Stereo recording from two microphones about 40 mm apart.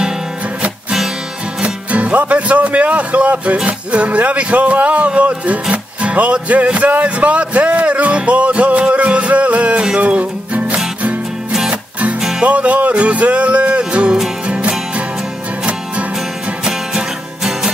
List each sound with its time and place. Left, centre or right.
1.6 s music: right
3.6 s speech: right
9.9 s music: right
12.4 s speech: right
14.5 s music: right
16.6 s music: centre